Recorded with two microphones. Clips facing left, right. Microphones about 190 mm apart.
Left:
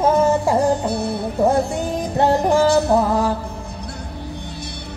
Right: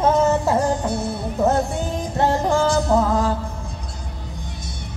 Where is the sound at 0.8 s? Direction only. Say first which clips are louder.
Left 2 dB; 65° left (ahead or behind).